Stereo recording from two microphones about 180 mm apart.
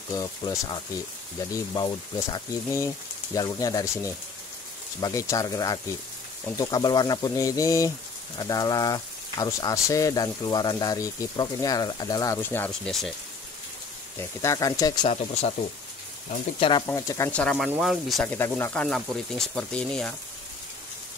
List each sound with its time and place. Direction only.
0.1 s speech: 20° left (ahead or behind); by 13.1 s 5° left (ahead or behind)
14.1 s speech: 15° left (ahead or behind)
16.3 s speech: 30° left (ahead or behind)
16.8 s speech: 15° left (ahead or behind)
17.3 s speech: 5° left (ahead or behind)